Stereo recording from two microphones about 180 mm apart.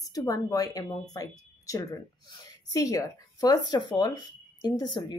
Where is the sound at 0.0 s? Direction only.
20° left (ahead or behind).